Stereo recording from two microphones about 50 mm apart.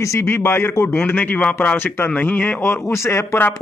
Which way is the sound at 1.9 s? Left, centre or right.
Left.